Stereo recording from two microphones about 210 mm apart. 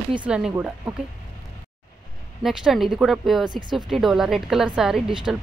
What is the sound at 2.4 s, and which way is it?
A woman's voice, centre (ahead or behind).